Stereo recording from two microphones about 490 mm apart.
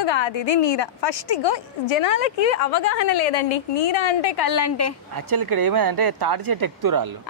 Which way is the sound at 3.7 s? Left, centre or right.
Left.